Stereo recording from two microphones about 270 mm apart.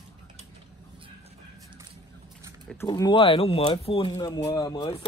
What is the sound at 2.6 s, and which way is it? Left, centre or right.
Speech, centre.